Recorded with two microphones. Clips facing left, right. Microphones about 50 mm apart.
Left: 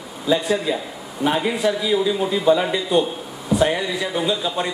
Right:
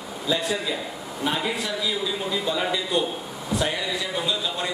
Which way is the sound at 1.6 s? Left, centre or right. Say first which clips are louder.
Left 10 dB; left.